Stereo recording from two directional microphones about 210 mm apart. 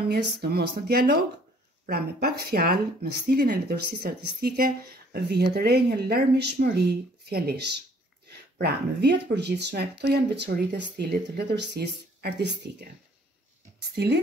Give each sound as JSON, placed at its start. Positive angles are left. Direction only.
{"t": 0.4, "sound": "speech", "side_deg": -50}
{"t": 13.9, "sound": "speech", "side_deg": -50}